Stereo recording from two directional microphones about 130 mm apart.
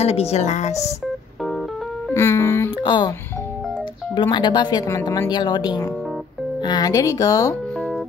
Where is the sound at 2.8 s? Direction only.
35° left (ahead or behind).